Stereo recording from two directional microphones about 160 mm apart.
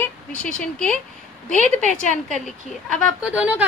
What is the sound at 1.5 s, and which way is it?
Speech, 50° right (ahead or behind).